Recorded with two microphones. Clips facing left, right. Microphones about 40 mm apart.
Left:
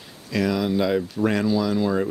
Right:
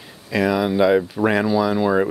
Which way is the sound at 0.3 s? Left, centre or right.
Centre.